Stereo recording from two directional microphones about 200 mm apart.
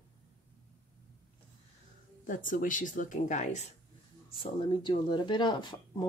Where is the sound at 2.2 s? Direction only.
40° left (ahead or behind).